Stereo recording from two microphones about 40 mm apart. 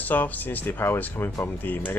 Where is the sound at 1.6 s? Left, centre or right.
Left.